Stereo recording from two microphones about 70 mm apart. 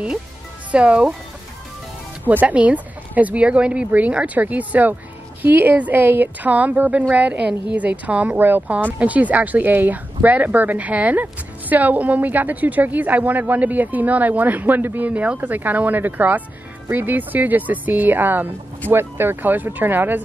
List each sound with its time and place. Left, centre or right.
0.7 s speech: centre
2.4 s speech: centre